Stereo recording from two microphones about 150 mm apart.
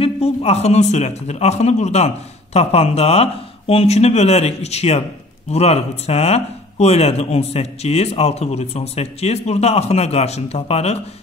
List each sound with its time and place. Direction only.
0.0 s speech: 40° left (ahead or behind)